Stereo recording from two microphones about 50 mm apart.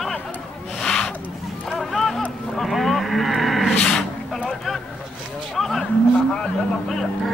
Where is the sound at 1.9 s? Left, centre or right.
Centre.